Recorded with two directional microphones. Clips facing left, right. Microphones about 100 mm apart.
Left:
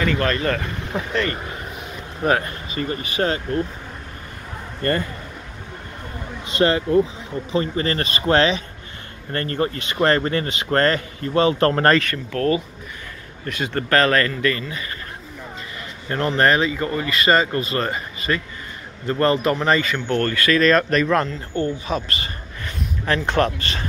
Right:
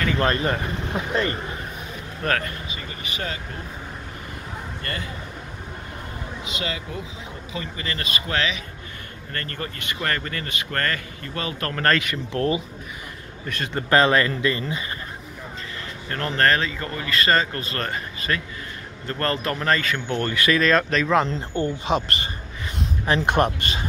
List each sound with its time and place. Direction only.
0.2 s speech: 25° right (ahead or behind)
2.2 s speech: 20° left (ahead or behind)
2.7 s a man's voice: 45° left (ahead or behind)
4.8 s speech: 50° left (ahead or behind)
6.6 s a man's voice: 40° left (ahead or behind)
12.3 s speech: 25° right (ahead or behind)
13.7 s speech: 20° right (ahead or behind)
16.3 s speech: 10° left (ahead or behind)
20.2 s speech: 15° right (ahead or behind)
20.6 s speech: centre (ahead or behind)
21.3 s speech: 25° right (ahead or behind)